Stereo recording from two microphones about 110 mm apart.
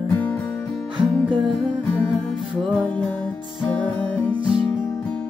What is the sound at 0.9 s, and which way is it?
Music, 50° right (ahead or behind).